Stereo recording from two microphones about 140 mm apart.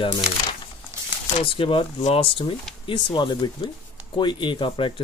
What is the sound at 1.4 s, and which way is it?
Speech, 40° left (ahead or behind).